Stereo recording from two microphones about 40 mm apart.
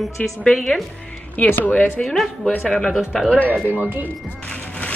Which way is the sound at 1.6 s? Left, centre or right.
Left.